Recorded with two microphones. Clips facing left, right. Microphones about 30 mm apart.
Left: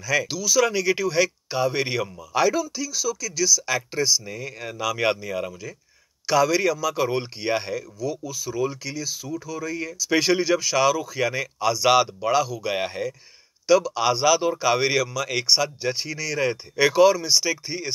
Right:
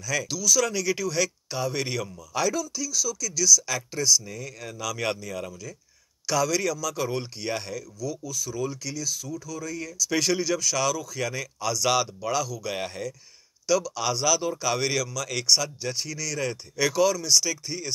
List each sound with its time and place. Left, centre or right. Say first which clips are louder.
0.0 s speech: left 4 dB; left